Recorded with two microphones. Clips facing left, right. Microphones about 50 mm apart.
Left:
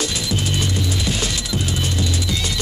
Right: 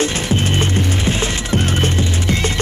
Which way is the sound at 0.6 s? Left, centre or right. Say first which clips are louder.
Right 4 dB; right.